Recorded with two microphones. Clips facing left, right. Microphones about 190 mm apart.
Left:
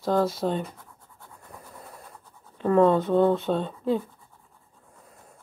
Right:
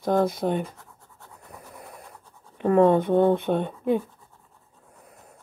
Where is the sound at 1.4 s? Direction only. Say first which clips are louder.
Right 1 dB; 20° right (ahead or behind).